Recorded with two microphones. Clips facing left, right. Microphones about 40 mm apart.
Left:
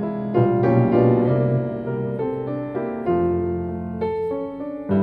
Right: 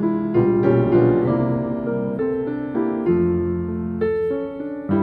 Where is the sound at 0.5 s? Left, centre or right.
Centre.